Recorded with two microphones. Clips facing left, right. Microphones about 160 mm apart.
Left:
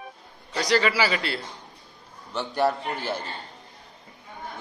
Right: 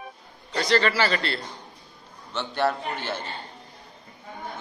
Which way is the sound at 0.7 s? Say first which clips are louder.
Even; 5° left (ahead or behind).